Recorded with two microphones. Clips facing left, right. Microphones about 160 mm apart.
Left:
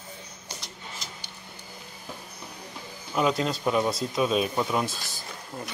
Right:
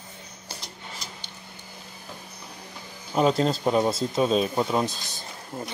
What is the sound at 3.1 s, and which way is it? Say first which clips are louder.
Speech: right 4 dB; 35° right (ahead or behind).